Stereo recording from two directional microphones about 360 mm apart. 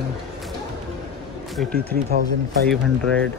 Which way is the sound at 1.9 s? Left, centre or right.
Right.